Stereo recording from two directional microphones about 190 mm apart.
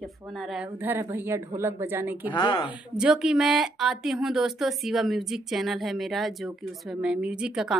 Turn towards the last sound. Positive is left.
turn(degrees=-5)  # may be behind; listen again after turning